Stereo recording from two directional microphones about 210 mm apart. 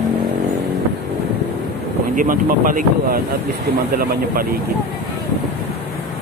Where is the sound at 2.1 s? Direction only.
40° right (ahead or behind).